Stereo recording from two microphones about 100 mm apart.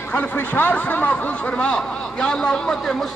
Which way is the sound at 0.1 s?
15° left (ahead or behind).